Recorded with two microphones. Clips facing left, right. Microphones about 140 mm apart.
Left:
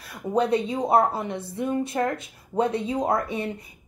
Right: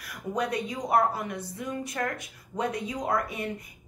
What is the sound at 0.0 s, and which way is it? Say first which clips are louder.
A woman's voice: left 6 dB; 25° left (ahead or behind).